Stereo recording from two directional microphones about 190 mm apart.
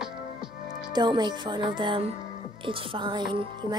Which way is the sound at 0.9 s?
25° right (ahead or behind).